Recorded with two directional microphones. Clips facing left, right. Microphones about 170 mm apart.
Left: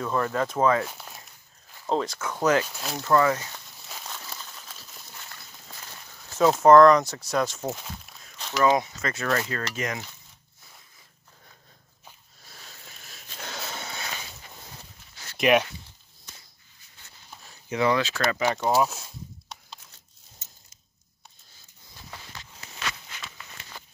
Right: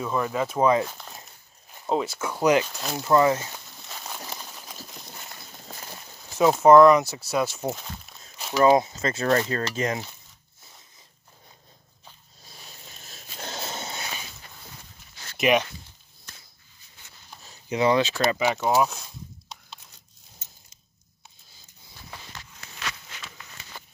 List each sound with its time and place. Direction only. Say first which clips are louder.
0.0 s speech: even; 5° right (ahead or behind)
0.8 s speech: even; 5° left (ahead or behind)
1.9 s speech: right 1 dB; 10° right (ahead or behind)
2.7 s speech: right 2 dB; centre (ahead or behind)
3.0 s stir: right 2 dB; 20° right (ahead or behind)
3.5 s crumpling: right 1 dB; 10° right (ahead or behind)
6.3 s speech: right 1 dB; 10° right (ahead or behind)
8.6 s stir: right 4 dB; 25° right (ahead or behind)
12.4 s a sound: right 1 dB; 15° right (ahead or behind)
15.3 s a sound: left 1 dB; centre (ahead or behind)
17.5 s speech: right 2 dB; 20° right (ahead or behind)
18.7 s speech: right 1 dB; centre (ahead or behind)